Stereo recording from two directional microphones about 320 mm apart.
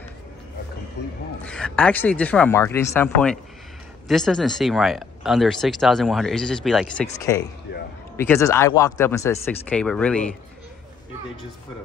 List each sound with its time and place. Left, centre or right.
1.0 s a man's voice: left
1.4 s speech: centre
7.7 s a sound: left
8.2 s speech: centre